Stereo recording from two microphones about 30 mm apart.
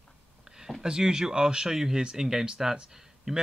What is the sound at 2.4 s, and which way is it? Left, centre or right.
Speech, right.